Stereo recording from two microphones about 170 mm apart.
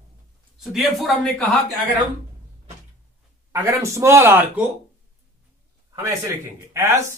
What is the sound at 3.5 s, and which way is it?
Speech, 15° right (ahead or behind).